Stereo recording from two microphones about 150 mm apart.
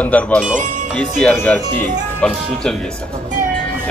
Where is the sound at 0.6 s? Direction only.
60° right (ahead or behind).